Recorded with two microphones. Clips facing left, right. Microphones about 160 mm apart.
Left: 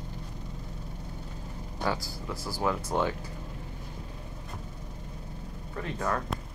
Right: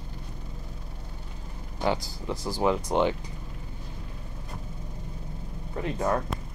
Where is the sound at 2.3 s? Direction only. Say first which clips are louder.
Right 5 dB; 20° right (ahead or behind).